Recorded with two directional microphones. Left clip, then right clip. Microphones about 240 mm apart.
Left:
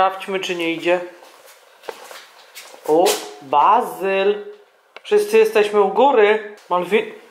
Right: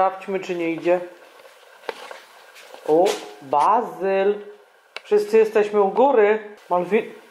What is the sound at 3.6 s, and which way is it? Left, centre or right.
Speech, left.